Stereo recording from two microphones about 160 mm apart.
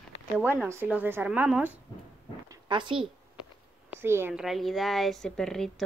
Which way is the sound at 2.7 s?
30° right (ahead or behind).